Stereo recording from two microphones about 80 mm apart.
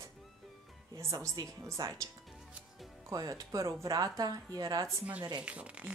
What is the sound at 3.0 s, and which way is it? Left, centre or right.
A woman's voice, right.